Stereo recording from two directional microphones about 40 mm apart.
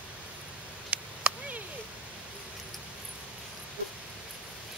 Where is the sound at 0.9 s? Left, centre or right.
Right.